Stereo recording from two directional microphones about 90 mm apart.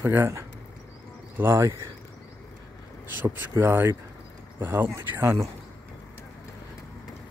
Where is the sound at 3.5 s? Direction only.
25° right (ahead or behind).